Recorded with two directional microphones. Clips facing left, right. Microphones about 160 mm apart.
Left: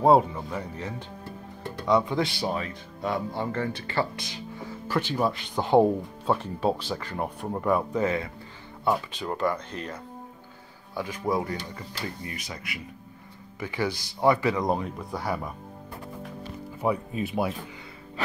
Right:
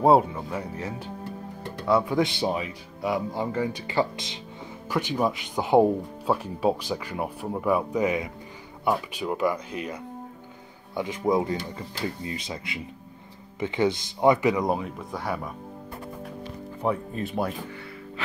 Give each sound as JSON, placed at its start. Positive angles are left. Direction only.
{"t": 0.0, "sound": "speech", "side_deg": -5}
{"t": 2.1, "sound": "speech", "side_deg": -20}
{"t": 11.0, "sound": "speech", "side_deg": -20}
{"t": 14.7, "sound": "speech", "side_deg": 0}
{"t": 16.8, "sound": "speech", "side_deg": 0}